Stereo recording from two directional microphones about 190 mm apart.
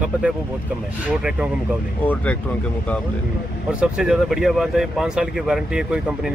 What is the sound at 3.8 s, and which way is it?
Speech, 5° right (ahead or behind).